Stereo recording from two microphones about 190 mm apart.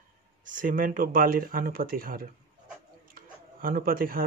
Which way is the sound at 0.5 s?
45° right (ahead or behind).